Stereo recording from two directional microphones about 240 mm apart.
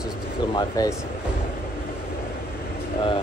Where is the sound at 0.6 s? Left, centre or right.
Centre.